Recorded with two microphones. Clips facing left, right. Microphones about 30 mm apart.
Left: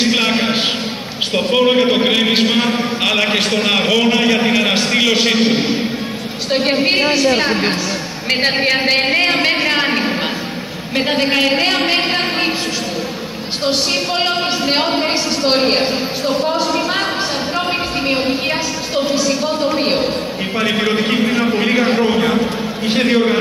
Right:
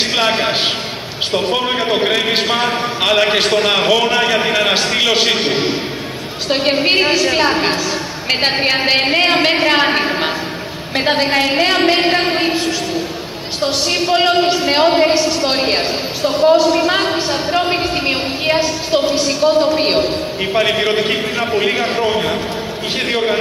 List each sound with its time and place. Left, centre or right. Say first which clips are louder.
0.1 s a sound: even; centre
1.3 s a man's voice: left 4 dB; centre
5.2 s a man's voice: left 1 dB; right
6.5 s a woman's voice: right 1 dB; centre
8.5 s a man's voice: even; centre
11.2 s a man's voice: even; centre
15.5 s a man's voice: left 2 dB; centre
16.3 s speech: right 7 dB; right
16.7 s a sound: right 3 dB; right
19.1 s speech: right 3 dB; right
20.5 s a man's voice: right 2 dB; centre